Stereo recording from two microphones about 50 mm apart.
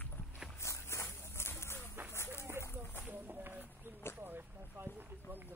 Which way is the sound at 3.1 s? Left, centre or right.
Right.